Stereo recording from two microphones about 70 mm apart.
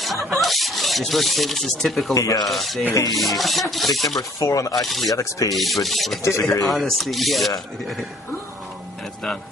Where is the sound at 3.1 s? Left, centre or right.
Centre.